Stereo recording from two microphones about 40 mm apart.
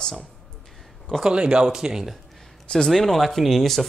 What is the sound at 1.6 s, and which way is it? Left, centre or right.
Speech, centre.